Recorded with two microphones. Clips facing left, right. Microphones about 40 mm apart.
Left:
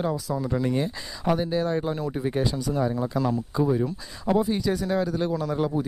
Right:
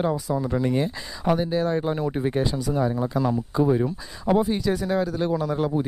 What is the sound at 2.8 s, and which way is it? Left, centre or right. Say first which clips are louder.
Speech: right 2 dB; centre.